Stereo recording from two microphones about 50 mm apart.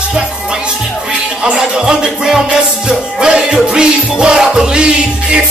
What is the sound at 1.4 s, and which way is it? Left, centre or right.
Music, centre.